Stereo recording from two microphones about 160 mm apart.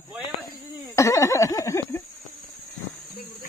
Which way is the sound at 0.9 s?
20° left (ahead or behind).